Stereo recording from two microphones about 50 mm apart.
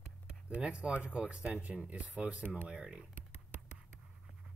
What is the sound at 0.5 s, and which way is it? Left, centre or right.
Speech, right.